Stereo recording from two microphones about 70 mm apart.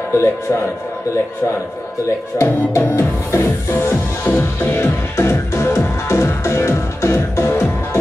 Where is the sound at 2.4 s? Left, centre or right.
Left.